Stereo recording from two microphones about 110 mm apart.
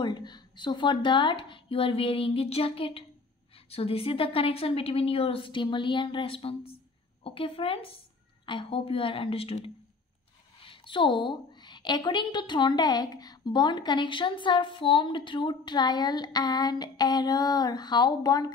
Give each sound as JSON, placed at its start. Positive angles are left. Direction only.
{"t": 0.0, "sound": "a woman's voice", "side_deg": 40}